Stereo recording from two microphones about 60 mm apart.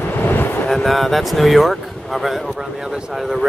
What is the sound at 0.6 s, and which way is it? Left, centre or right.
Speech, centre.